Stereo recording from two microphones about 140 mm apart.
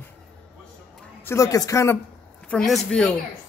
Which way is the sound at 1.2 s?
20° left (ahead or behind).